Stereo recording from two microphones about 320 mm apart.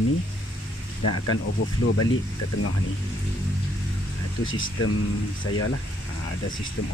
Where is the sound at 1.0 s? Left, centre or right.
Left.